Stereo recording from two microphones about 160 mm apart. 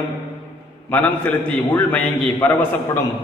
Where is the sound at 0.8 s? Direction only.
10° left (ahead or behind).